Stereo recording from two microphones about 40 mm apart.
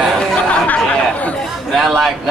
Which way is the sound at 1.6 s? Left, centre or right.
Centre.